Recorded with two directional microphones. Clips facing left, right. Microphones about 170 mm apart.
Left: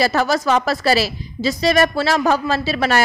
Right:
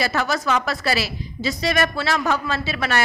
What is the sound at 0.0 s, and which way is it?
A woman's voice, 35° left (ahead or behind).